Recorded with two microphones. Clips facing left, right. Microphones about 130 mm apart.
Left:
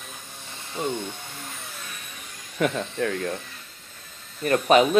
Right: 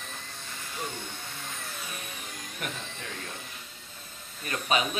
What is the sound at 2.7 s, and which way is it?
Speech, 65° left (ahead or behind).